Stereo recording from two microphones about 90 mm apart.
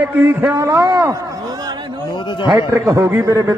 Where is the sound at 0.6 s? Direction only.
40° right (ahead or behind).